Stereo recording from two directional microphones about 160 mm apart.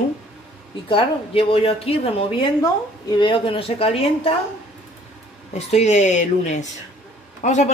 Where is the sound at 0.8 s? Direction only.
35° left (ahead or behind).